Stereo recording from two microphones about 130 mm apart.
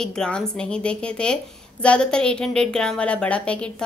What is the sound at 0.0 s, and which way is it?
A woman's voice, 5° left (ahead or behind).